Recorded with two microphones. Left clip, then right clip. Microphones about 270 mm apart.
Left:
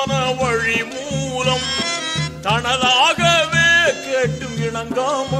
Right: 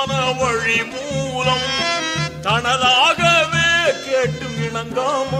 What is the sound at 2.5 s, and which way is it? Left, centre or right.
Speech, centre.